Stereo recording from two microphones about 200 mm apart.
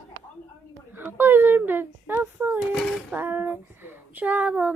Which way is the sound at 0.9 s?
10° right (ahead or behind).